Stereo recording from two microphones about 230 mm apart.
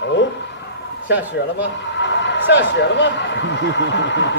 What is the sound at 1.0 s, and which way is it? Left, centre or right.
A man's voice, left.